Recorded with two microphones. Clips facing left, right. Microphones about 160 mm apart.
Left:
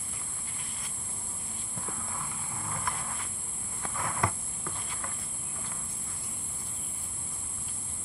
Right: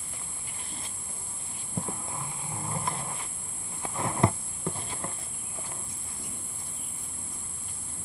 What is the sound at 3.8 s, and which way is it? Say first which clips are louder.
Insect: right 5 dB; 25° right (ahead or behind).